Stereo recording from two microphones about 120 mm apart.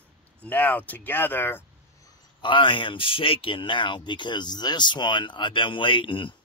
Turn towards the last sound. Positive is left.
turn(degrees=45)  # may be behind; listen again after turning